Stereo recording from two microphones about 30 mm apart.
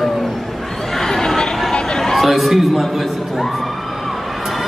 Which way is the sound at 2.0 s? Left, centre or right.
Centre.